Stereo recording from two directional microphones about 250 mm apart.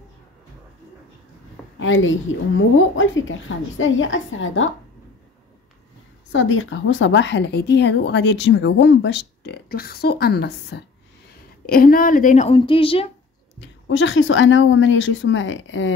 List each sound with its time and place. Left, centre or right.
1.8 s speech: left
6.3 s speech: left
13.6 s speech: left